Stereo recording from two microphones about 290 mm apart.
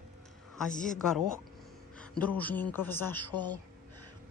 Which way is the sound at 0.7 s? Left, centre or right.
Left.